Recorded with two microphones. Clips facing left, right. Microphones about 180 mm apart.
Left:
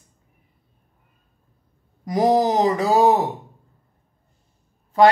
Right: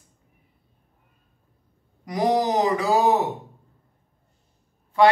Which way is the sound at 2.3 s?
35° left (ahead or behind).